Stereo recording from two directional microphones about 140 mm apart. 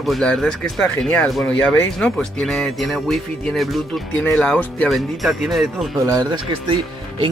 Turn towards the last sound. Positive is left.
turn(degrees=-35)  # may be behind; listen again after turning